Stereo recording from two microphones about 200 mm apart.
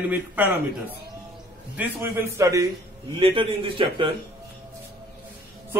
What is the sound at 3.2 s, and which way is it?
Speech, 25° right (ahead or behind).